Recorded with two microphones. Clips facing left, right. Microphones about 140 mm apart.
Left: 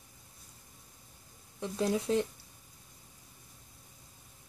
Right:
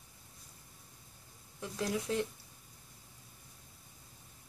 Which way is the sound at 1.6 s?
25° left (ahead or behind).